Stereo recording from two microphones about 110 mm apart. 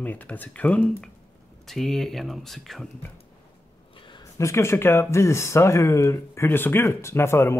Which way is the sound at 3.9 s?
50° left (ahead or behind).